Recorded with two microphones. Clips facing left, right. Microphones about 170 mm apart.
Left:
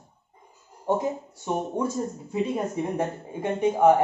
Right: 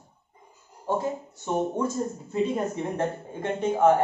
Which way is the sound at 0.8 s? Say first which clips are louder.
Left 2 dB; 15° left (ahead or behind).